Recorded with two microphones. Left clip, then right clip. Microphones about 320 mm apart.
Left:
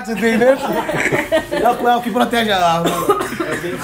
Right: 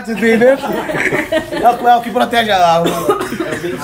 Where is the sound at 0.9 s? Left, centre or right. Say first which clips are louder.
Right 3 dB; left.